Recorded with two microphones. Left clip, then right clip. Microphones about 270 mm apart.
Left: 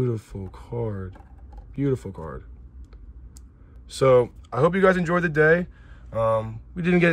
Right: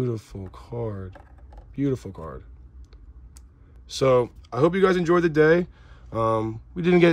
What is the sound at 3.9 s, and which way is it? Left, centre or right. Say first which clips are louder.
Speech: left 2 dB; centre.